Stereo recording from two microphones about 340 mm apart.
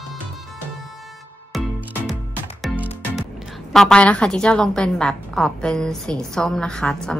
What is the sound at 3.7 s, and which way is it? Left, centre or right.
A woman's voice, centre.